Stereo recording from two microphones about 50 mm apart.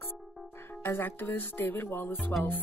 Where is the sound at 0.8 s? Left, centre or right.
Left.